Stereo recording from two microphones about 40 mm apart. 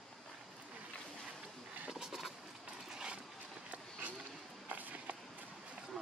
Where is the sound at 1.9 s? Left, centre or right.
Centre.